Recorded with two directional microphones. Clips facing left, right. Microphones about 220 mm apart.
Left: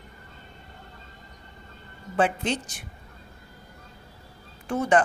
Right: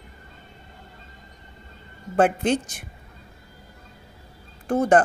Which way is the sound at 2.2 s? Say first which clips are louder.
Right 5 dB; 55° right (ahead or behind).